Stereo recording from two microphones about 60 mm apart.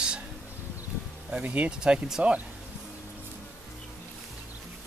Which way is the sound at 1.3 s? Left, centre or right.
Right.